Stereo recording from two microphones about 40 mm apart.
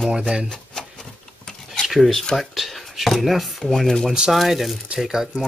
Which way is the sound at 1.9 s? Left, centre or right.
Centre.